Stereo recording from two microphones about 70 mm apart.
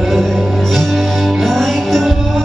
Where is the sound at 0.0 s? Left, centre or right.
Centre.